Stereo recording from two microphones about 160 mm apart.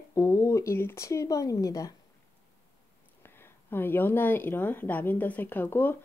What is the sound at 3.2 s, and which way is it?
Speech, 15° left (ahead or behind).